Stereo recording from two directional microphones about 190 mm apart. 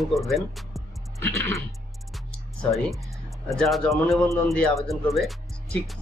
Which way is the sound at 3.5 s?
Centre (ahead or behind).